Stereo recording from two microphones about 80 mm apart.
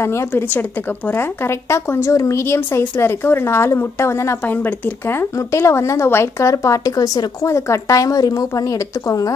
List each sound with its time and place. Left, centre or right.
0.3 s a woman's voice: left
4.5 s a woman's voice: left
6.6 s a woman's voice: left